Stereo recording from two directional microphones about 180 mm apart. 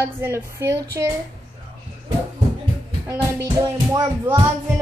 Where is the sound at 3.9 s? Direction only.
20° right (ahead or behind).